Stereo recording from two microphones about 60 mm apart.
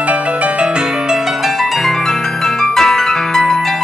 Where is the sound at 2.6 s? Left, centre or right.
Centre.